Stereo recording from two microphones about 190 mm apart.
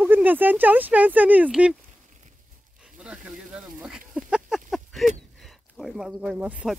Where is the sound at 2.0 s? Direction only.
40° right (ahead or behind).